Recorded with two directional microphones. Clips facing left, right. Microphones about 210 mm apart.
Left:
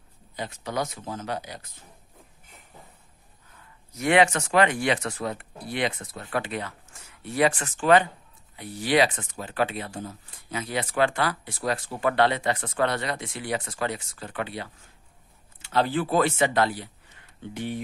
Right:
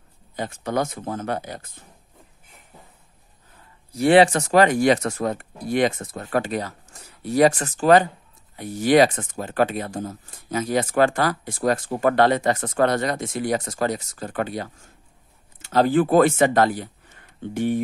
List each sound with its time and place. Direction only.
0.4 s speech: 50° right (ahead or behind)
3.9 s speech: 35° right (ahead or behind); by 17.7 s 50° right (ahead or behind)